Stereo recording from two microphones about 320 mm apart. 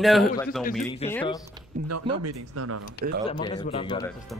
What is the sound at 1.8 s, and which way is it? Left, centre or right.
Speech, right.